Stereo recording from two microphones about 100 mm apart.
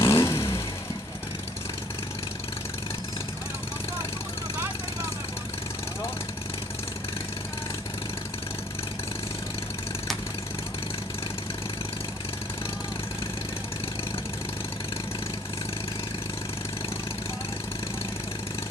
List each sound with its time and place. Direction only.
0.0 s vehicle: 30° left (ahead or behind)